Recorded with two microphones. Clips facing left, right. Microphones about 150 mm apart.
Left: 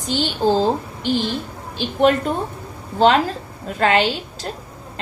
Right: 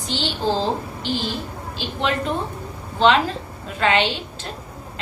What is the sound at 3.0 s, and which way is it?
A woman's voice, 45° left (ahead or behind).